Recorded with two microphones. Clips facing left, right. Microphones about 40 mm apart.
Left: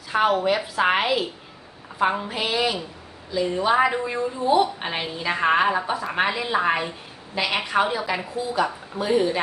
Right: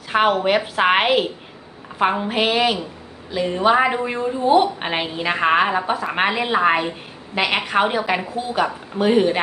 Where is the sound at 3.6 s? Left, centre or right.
Right.